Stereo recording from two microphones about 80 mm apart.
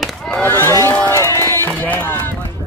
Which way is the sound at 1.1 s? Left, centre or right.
Left.